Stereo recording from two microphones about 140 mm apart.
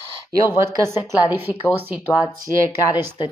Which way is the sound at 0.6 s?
20° right (ahead or behind).